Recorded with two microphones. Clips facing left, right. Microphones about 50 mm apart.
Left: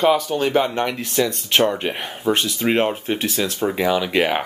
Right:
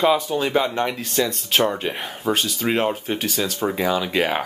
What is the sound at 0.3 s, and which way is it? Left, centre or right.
Speech, centre.